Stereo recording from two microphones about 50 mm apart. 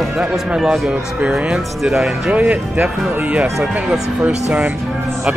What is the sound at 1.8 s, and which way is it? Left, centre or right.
Speech, centre.